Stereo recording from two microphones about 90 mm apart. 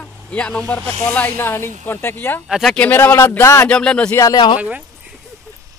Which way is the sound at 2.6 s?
15° left (ahead or behind).